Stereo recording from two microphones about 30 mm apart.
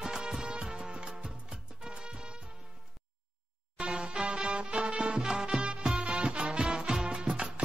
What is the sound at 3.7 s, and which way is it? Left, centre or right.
Music, right.